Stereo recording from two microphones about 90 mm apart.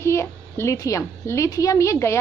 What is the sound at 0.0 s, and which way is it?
A woman's voice, 30° left (ahead or behind).